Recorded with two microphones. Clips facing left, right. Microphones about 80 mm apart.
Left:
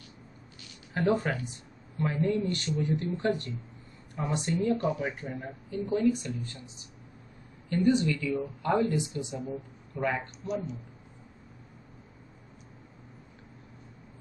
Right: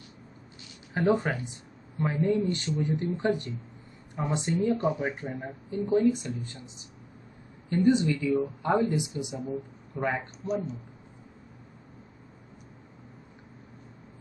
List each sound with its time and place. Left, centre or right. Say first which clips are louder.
0.6 s speech: right 2 dB; right
10.4 s speech: right 3 dB; right